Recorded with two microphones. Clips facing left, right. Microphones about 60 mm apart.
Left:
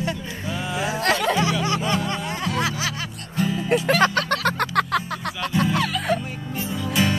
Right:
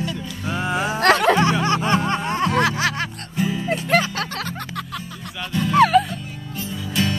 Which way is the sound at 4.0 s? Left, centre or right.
Left.